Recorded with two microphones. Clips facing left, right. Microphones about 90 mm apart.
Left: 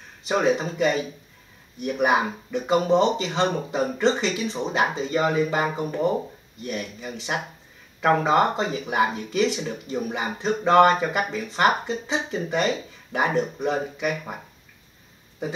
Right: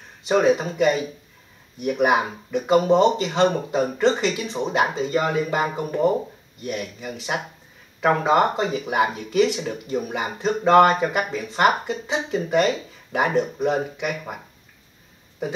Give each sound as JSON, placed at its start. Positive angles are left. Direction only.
{"t": 0.3, "sound": "speech", "side_deg": -5}